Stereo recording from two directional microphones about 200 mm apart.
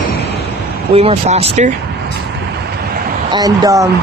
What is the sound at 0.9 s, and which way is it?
Speech, 30° right (ahead or behind).